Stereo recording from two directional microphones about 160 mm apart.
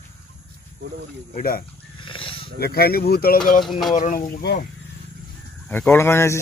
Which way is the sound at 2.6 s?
75° left (ahead or behind).